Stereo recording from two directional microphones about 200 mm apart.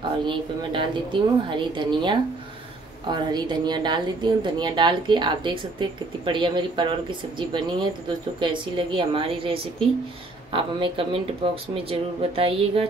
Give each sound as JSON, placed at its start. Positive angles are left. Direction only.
{"t": 0.2, "sound": "a woman's voice", "side_deg": -25}